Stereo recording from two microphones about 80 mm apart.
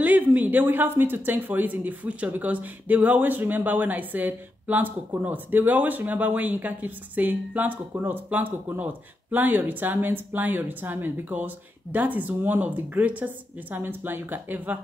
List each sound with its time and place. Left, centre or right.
0.0 s speech: right